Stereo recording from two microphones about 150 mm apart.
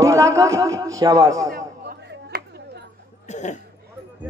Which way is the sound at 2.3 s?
80° right.